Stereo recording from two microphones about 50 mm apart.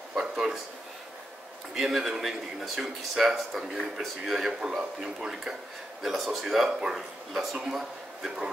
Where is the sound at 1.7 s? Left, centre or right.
Centre.